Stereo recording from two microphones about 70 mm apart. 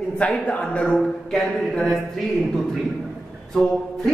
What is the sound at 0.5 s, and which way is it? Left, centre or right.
Speech, centre.